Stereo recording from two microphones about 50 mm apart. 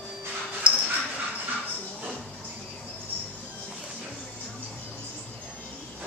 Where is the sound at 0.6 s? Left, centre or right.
Right.